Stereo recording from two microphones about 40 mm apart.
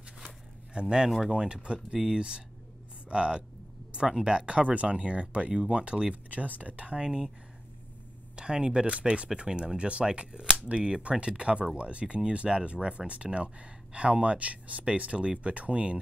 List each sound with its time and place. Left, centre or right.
0.7 s speech: right
6.4 s speech: right
7.1 s speech: centre
8.4 s speech: right